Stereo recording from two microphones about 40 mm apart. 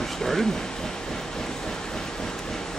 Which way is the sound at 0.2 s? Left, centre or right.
Centre.